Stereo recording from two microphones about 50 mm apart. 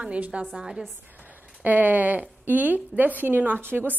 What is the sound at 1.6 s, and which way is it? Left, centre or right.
A woman's voice, right.